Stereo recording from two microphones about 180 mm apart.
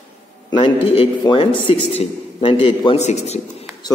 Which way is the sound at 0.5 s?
30° left (ahead or behind).